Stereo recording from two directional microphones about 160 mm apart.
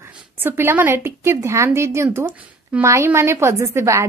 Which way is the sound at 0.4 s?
15° right (ahead or behind).